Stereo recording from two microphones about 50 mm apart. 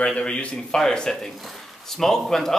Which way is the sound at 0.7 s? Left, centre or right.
Centre.